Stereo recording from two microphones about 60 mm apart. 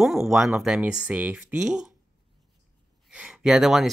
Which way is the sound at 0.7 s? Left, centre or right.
Centre.